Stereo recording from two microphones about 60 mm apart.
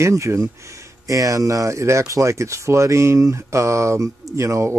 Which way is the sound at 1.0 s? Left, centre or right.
Right.